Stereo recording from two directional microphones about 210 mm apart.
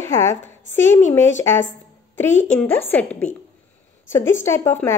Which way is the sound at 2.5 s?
10° left (ahead or behind).